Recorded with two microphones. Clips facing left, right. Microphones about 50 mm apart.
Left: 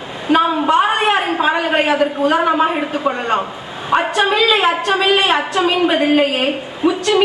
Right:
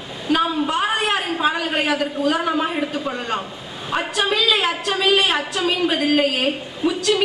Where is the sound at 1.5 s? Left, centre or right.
Left.